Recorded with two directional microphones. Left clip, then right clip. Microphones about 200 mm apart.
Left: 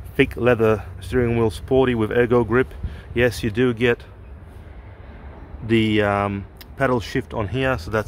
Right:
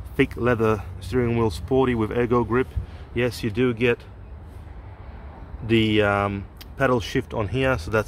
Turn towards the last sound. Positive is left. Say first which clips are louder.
# even
turn(degrees=10)  # may be behind; listen again after turning